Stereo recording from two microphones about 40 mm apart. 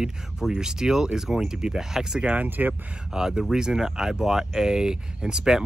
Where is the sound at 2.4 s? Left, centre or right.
Right.